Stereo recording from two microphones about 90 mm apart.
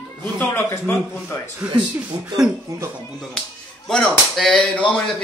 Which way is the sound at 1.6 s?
15° right (ahead or behind).